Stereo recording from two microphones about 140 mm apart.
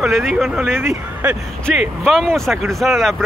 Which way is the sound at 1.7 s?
Centre (ahead or behind).